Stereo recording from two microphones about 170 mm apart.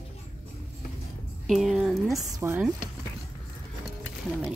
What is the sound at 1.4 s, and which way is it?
Speech, centre (ahead or behind).